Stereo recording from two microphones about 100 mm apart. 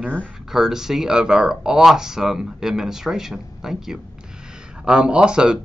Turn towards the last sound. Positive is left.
turn(degrees=-10)  # may be behind; listen again after turning